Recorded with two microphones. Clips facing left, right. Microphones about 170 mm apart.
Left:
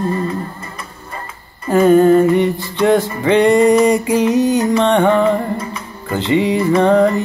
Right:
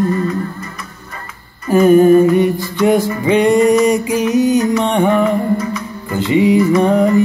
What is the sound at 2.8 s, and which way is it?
Mantra, 10° right (ahead or behind).